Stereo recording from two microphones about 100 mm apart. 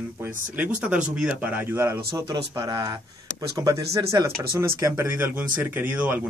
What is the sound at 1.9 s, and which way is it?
Speech, 35° right (ahead or behind).